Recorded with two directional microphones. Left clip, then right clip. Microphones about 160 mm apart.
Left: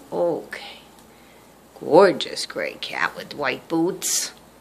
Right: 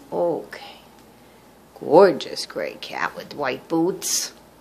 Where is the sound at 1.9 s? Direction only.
15° right (ahead or behind).